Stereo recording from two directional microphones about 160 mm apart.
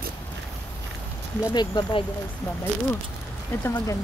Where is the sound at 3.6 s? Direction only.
15° left (ahead or behind).